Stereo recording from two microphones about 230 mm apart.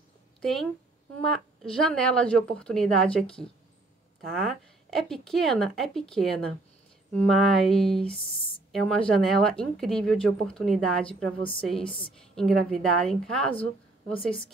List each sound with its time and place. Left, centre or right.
0.4 s speech: centre
8.3 s speech: left
8.7 s speech: centre